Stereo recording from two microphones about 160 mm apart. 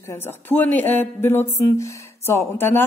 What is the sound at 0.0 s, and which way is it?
Speech, 15° left (ahead or behind).